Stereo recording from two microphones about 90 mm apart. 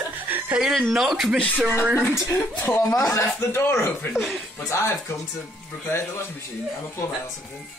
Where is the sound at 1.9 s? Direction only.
30° left (ahead or behind).